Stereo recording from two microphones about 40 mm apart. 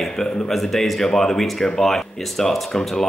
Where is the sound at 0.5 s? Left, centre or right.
Centre.